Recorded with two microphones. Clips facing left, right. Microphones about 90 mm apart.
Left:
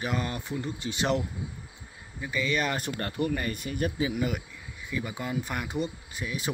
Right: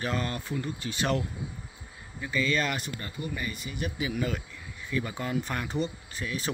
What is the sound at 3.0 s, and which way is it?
Speech, 65° left (ahead or behind).